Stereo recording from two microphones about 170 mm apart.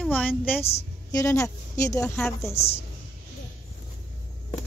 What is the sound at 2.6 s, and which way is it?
Speech, 40° left (ahead or behind).